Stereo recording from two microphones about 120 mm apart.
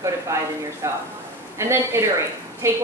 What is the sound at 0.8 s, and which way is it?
A woman's voice, 25° right (ahead or behind).